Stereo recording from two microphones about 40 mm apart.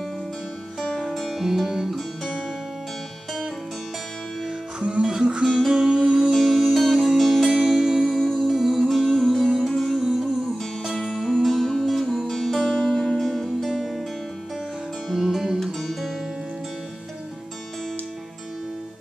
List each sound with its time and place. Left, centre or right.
1.1 s music: centre
1.4 s music: centre
4.7 s music: right
5.0 s music: centre
5.5 s music: centre
5.9 s music: centre
6.3 s music: centre
15.0 s music: centre
15.6 s music: centre